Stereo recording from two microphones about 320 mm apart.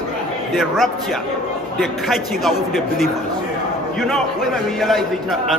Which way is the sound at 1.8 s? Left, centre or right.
Centre.